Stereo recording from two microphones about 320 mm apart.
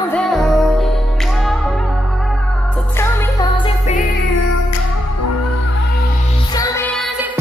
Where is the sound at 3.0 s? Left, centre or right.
Centre.